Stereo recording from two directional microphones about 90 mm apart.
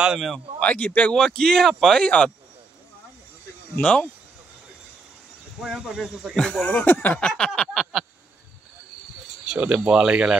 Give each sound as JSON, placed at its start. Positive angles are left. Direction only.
{"t": 0.0, "sound": "a man's voice", "side_deg": -5}
{"t": 0.6, "sound": "speech", "side_deg": 15}
{"t": 3.7, "sound": "speech", "side_deg": 15}
{"t": 5.6, "sound": "speech", "side_deg": -5}
{"t": 9.5, "sound": "speech", "side_deg": -10}